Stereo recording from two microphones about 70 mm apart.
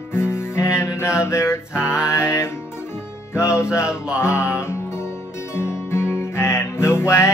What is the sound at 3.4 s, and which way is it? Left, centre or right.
Music, left.